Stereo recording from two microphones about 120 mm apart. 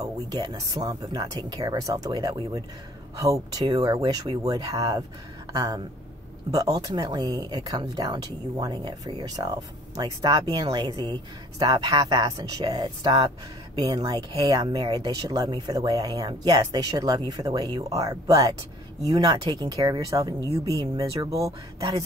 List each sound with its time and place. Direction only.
0.0 s speech: 35° right (ahead or behind)
3.7 s speech: 35° right (ahead or behind)